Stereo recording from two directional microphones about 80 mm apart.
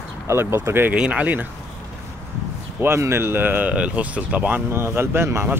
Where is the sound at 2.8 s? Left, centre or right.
Right.